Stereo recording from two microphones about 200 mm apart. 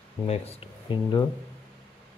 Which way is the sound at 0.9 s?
25° left (ahead or behind).